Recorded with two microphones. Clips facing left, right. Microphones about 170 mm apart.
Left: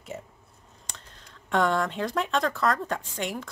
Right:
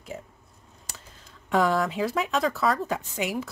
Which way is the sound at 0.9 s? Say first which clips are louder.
Even; 5° right (ahead or behind).